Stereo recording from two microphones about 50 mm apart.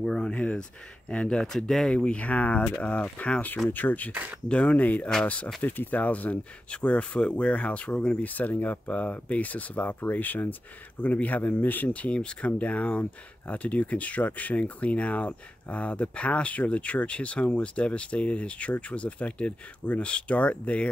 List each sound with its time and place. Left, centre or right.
0.0 s speech: centre
0.3 s speech: left
1.4 s speech: centre; by 4.1 s left
4.1 s speech: right
4.5 s speech: left
4.7 s speech: left
5.6 s speech: left
8.2 s speech: left